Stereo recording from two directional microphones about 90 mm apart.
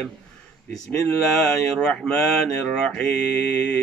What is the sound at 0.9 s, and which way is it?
Speech, 5° left (ahead or behind).